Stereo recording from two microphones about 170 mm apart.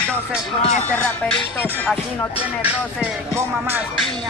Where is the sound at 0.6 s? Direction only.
40° left (ahead or behind).